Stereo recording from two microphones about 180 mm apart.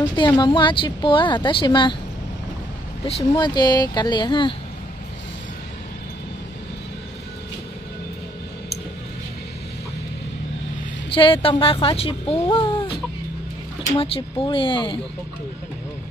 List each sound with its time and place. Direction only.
0.0 s speech: 25° left (ahead or behind)
3.1 s speech: 30° left (ahead or behind)
11.1 s speech: 30° left (ahead or behind)
13.9 s speech: 30° left (ahead or behind)